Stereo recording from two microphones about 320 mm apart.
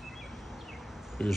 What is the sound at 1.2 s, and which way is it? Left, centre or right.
Speech, centre.